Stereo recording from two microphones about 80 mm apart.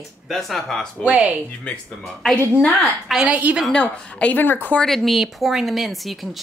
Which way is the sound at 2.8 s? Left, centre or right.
Centre.